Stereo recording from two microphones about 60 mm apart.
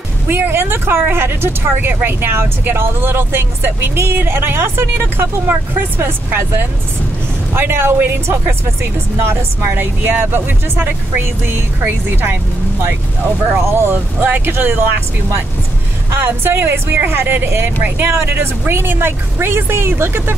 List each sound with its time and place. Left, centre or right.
0.3 s speech: right
13.7 s speech: right
16.1 s speech: right